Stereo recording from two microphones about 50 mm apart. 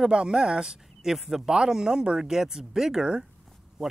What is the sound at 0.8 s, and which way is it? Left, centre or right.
A man's voice, centre.